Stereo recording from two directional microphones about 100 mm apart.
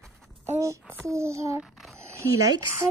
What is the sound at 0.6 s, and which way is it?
Speech, 30° right (ahead or behind).